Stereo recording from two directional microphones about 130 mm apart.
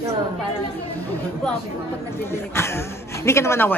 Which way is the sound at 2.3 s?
20° left (ahead or behind).